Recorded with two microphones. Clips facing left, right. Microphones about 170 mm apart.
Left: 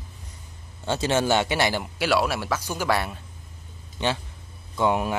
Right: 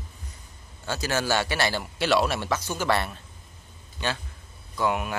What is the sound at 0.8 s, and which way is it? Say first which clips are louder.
A man's voice: left 4 dB; 25° left (ahead or behind).